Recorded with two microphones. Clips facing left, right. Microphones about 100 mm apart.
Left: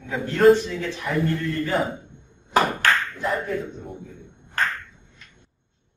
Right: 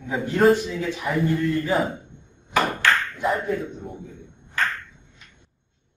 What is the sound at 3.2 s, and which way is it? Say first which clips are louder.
Speech: right 2 dB; centre (ahead or behind).